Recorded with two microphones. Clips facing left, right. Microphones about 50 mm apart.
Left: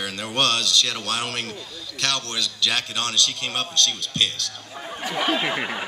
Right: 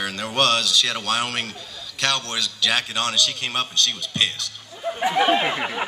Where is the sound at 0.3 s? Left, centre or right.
Centre.